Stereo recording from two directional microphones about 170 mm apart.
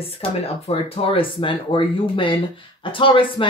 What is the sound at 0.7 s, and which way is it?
Speech, 35° left (ahead or behind).